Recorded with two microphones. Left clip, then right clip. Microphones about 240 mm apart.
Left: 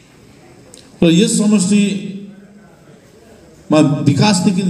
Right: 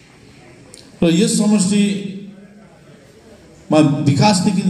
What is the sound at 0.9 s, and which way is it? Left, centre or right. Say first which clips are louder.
A man's voice: left 3 dB; left.